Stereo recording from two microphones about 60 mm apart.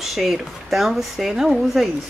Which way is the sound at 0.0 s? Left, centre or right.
Centre.